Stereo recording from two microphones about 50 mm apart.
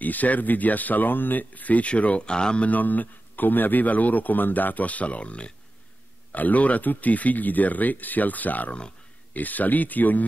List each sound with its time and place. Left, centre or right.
0.0 s a man's voice: left
2.7 s a man's voice: left